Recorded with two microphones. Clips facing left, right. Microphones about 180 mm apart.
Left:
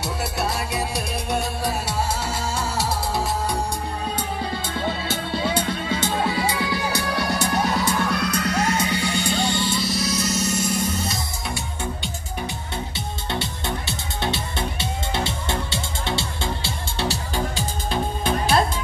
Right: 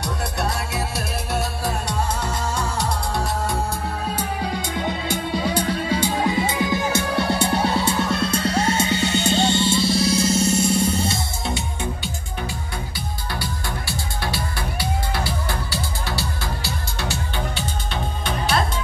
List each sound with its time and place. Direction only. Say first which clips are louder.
0.0 s music: even; centre (ahead or behind)
4.2 s music: right 2 dB; 10° right (ahead or behind)
12.9 s music: left 2 dB; 25° left (ahead or behind)